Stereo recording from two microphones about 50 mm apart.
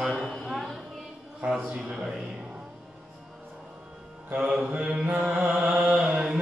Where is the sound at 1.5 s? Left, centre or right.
Centre.